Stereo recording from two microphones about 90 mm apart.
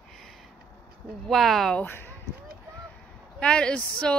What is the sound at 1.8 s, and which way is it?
Speech, 25° left (ahead or behind).